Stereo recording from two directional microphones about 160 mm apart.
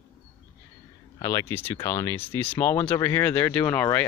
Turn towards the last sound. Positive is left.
turn(degrees=10)  # may be behind; listen again after turning